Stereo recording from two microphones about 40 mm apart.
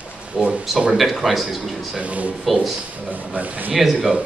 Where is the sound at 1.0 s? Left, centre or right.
Centre.